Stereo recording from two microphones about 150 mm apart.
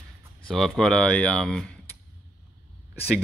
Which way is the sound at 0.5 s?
Centre (ahead or behind).